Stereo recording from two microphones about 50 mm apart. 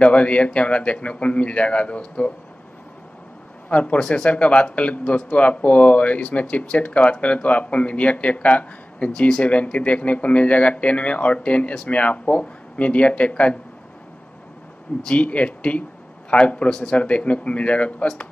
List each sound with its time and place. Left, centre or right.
0.0 s speech: left
3.6 s speech: left
15.0 s speech: left